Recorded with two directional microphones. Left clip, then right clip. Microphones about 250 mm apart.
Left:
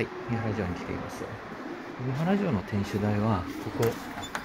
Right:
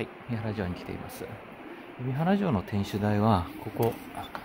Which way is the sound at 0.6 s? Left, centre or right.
Right.